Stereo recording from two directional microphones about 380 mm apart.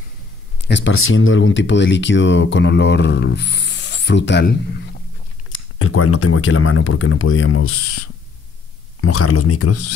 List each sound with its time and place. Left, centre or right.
0.7 s speech: left